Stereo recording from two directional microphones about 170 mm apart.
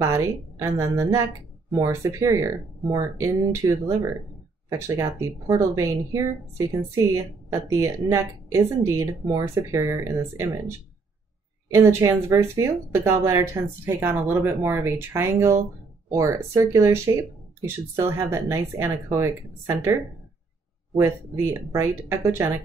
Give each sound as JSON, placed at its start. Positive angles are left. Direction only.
{"t": 0.0, "sound": "a woman's voice", "side_deg": -15}
{"t": 11.7, "sound": "a woman's voice", "side_deg": -15}
{"t": 21.7, "sound": "a woman's voice", "side_deg": -15}